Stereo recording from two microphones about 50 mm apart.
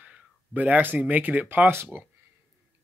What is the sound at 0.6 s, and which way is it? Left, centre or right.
Speech, right.